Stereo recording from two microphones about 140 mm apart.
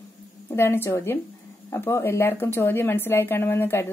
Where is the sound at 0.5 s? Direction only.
15° left (ahead or behind).